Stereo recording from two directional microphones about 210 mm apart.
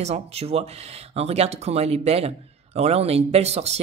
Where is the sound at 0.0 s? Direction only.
30° right (ahead or behind).